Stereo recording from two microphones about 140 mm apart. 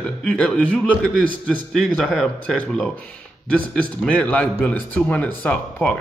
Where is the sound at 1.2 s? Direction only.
80° right.